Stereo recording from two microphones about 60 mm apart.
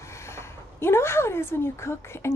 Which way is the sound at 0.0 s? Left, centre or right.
Left.